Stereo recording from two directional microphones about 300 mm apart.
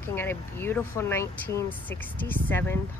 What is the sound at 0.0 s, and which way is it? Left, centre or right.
Speech, centre.